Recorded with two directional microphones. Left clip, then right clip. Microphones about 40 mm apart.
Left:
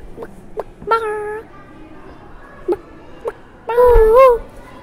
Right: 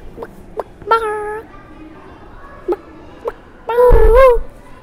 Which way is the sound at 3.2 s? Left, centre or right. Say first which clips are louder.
Right 1 dB; right.